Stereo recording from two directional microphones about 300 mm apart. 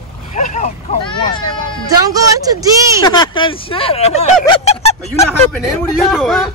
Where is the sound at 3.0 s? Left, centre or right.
Centre.